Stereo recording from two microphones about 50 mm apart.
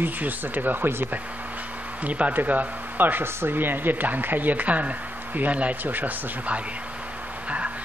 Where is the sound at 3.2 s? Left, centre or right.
Right.